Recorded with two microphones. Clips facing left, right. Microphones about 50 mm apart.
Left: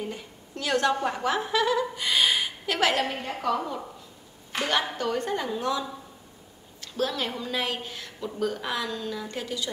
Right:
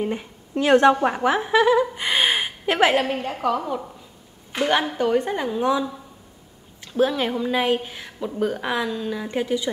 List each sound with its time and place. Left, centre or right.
0.0 s a woman's voice: right